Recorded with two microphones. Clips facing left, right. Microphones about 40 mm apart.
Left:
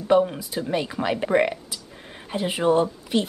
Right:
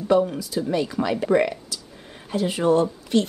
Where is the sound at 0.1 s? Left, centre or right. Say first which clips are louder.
Even; left.